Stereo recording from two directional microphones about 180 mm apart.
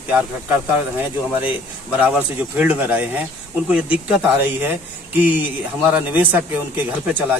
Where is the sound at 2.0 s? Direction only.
10° right (ahead or behind).